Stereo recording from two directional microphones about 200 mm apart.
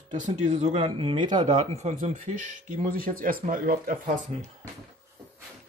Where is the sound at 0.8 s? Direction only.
25° right (ahead or behind).